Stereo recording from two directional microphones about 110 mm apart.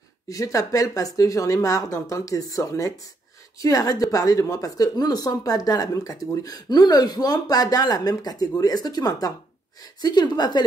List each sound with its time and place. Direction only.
0.3 s a woman's voice: 30° left (ahead or behind)